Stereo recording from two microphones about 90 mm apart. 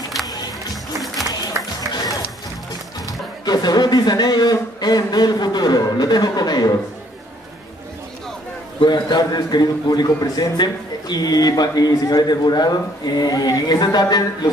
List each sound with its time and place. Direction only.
0.9 s music: centre (ahead or behind)
3.1 s a man's voice: 45° left (ahead or behind)
8.8 s a man's voice: 50° left (ahead or behind)